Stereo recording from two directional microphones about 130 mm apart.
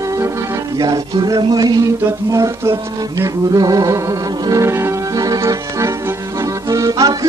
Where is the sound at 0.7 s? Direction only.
30° right (ahead or behind).